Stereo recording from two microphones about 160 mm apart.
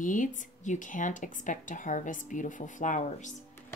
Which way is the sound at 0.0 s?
55° left (ahead or behind).